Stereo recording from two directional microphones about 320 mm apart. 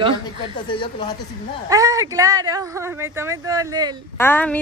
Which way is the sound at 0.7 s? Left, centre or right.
Centre.